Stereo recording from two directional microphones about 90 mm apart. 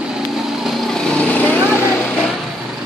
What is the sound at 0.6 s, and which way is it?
Lawn mower, 5° left (ahead or behind).